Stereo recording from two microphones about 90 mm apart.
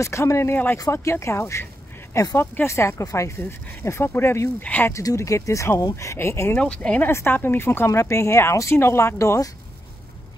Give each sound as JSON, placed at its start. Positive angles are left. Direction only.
{"t": 0.0, "sound": "speech", "side_deg": 30}
{"t": 4.9, "sound": "speech", "side_deg": 35}
{"t": 6.5, "sound": "speech", "side_deg": 10}
{"t": 7.1, "sound": "speech", "side_deg": 25}